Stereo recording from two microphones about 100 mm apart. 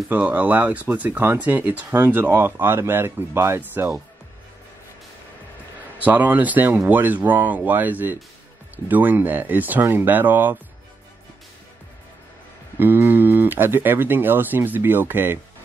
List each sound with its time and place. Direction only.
0.1 s speech: 15° right (ahead or behind)
5.9 s speech: 15° right (ahead or behind)
12.7 s speech: 20° right (ahead or behind)